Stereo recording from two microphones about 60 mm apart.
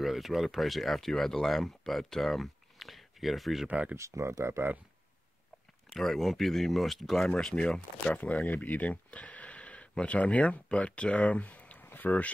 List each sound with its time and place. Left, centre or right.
0.0 s speech: centre
3.6 s speech: right
3.9 s speech: right
5.9 s speech: centre
7.2 s speech: centre; by 12.3 s left